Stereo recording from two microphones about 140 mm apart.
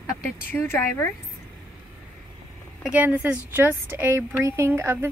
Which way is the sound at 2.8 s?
10° right (ahead or behind).